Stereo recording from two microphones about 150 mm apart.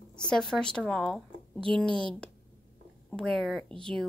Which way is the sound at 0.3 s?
5° left (ahead or behind).